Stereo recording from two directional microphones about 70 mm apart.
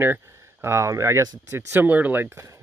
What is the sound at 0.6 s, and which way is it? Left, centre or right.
Speech, right.